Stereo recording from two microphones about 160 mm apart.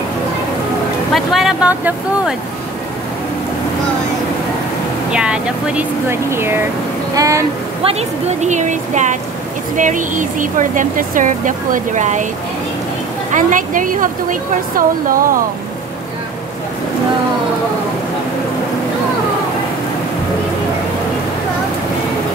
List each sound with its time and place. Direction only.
1.1 s speech: centre (ahead or behind)
5.1 s speech: 5° right (ahead or behind)
7.8 s speech: 45° right (ahead or behind)
13.3 s a woman's voice: 55° right (ahead or behind)